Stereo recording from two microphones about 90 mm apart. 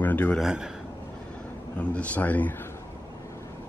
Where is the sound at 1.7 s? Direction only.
15° left (ahead or behind).